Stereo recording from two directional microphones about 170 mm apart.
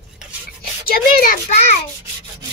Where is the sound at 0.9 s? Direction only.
60° left (ahead or behind).